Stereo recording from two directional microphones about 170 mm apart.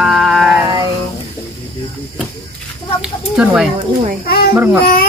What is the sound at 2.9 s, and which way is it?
Speech, 5° right (ahead or behind).